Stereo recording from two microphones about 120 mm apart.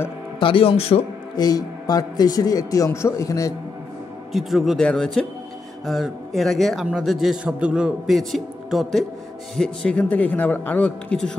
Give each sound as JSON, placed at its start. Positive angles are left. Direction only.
{"t": 0.4, "sound": "speech", "side_deg": 45}
{"t": 1.3, "sound": "a man's voice", "side_deg": 35}
{"t": 4.3, "sound": "a man's voice", "side_deg": 0}